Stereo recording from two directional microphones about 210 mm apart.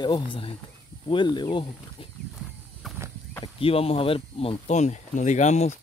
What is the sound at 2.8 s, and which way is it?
Horse, centre (ahead or behind).